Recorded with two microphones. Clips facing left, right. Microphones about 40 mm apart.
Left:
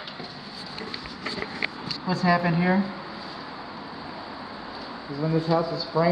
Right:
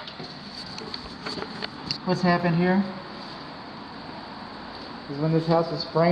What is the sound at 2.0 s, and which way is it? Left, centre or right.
Speech, centre.